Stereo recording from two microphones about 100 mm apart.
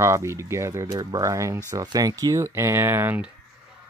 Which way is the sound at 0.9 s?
40° right (ahead or behind).